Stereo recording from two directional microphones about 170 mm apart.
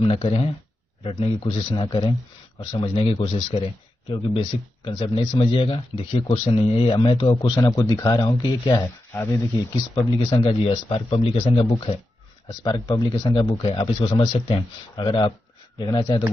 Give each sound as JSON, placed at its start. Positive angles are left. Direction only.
{"t": 0.0, "sound": "a man's voice", "side_deg": 35}
{"t": 9.1, "sound": "speech", "side_deg": 15}
{"t": 9.9, "sound": "a man's voice", "side_deg": 30}